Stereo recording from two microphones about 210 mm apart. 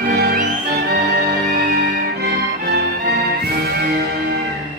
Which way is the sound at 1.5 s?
45° right (ahead or behind).